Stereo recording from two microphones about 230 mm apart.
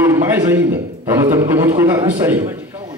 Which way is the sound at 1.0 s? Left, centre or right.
Centre.